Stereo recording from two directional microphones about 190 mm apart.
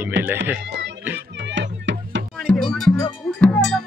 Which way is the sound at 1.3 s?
70° right (ahead or behind).